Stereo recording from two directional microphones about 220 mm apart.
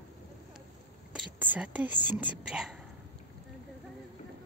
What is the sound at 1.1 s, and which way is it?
Whispering, 5° right (ahead or behind).